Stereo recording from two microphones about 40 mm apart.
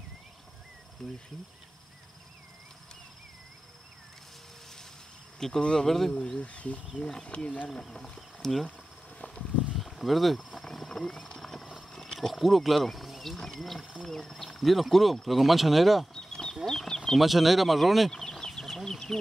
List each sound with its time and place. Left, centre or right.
1.0 s speech: centre
5.6 s speech: left
5.9 s speech: centre
6.1 s speech: left
6.4 s speech: left
7.0 s speech: centre
7.2 s speech: left
7.8 s speech: centre
9.8 s a sound: centre
11.9 s wild animals: centre
13.4 s speech: centre
16.2 s a sound: centre
17.2 s speech: centre
18.4 s a sound: centre